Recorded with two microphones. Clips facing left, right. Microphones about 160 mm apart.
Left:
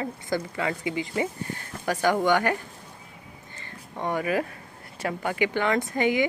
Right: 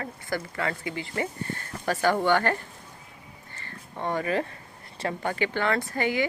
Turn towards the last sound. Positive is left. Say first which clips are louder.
# left 3 dB
turn(degrees=20)  # may be behind; listen again after turning